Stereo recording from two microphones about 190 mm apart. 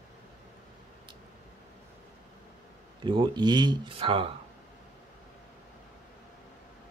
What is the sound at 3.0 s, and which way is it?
Speech, 25° right (ahead or behind).